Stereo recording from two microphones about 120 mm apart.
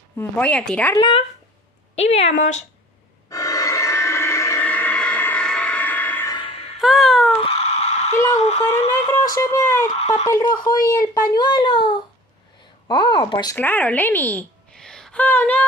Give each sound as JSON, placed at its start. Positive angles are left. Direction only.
{"t": 0.2, "sound": "a woman's voice", "side_deg": 15}
{"t": 0.9, "sound": "speech", "side_deg": 40}
{"t": 2.0, "sound": "speech", "side_deg": 60}
{"t": 3.3, "sound": "a sound", "side_deg": 30}
{"t": 4.6, "sound": "music", "side_deg": 15}
{"t": 6.8, "sound": "a sound", "side_deg": 0}
{"t": 7.4, "sound": "a sound", "side_deg": 60}
{"t": 8.4, "sound": "speech", "side_deg": 65}
{"t": 9.2, "sound": "speech", "side_deg": 30}
{"t": 9.8, "sound": "speech", "side_deg": 70}
{"t": 10.2, "sound": "speech", "side_deg": 30}
{"t": 13.6, "sound": "a woman's voice", "side_deg": 15}